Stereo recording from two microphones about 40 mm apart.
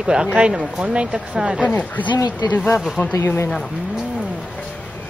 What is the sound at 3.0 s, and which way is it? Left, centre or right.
Speech, left.